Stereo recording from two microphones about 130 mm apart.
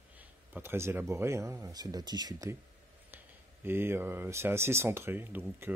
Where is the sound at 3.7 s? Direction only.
15° right (ahead or behind).